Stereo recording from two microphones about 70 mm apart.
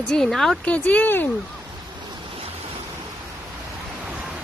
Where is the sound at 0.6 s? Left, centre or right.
Left.